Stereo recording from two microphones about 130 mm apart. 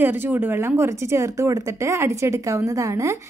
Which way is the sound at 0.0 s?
15° right (ahead or behind).